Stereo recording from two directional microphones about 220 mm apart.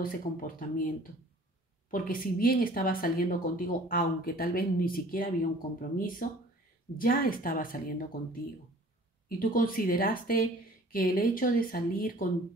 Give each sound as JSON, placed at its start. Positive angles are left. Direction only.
{"t": 0.0, "sound": "speech", "side_deg": 40}
{"t": 9.4, "sound": "speech", "side_deg": 40}